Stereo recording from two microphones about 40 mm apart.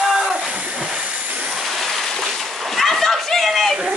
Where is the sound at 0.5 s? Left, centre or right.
Right.